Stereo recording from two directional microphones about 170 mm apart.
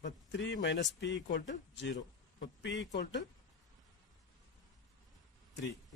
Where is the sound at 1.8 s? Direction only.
90° left.